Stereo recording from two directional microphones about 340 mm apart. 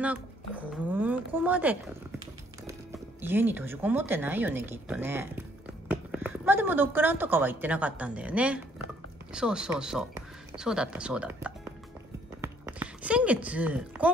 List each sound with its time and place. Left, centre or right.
0.0 s speech: centre
3.2 s a woman's voice: centre
12.4 s a sound: centre